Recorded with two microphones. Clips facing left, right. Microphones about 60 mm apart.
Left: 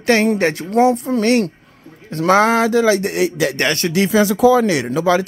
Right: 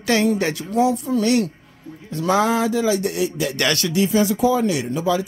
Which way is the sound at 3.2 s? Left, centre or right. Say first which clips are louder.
Left 5 dB; left.